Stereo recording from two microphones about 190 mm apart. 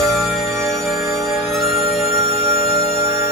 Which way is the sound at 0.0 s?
Centre (ahead or behind).